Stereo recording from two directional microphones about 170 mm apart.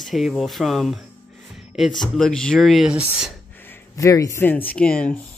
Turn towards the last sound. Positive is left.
turn(degrees=5)  # may be behind; listen again after turning